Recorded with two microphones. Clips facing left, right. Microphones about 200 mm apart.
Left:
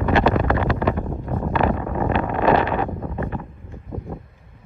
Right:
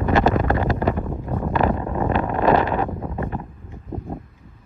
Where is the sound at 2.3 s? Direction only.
35° right (ahead or behind).